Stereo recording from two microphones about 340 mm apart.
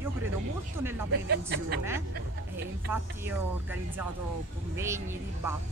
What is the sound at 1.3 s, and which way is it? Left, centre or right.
Speech, right.